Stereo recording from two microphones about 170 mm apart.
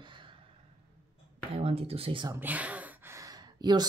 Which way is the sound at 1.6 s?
35° right (ahead or behind).